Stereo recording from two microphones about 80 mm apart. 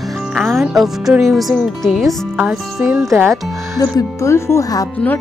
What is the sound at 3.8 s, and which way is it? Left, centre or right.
Speech, left.